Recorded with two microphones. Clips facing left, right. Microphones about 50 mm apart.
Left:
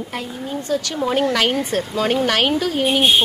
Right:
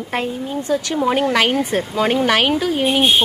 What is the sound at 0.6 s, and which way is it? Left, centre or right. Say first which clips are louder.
A woman's voice: right 3 dB; right.